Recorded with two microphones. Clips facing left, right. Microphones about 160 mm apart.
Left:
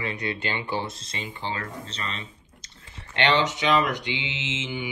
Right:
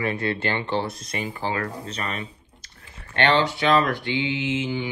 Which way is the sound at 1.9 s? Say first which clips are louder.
Right 5 dB; 30° left (ahead or behind).